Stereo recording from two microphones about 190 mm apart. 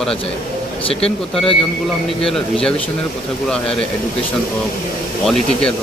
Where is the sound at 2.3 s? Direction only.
5° left (ahead or behind).